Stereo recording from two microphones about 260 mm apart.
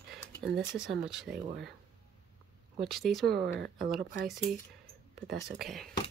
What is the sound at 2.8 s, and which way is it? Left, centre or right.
Speech, centre.